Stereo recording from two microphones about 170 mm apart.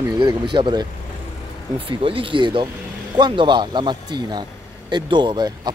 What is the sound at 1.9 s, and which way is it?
Speech, 30° right (ahead or behind).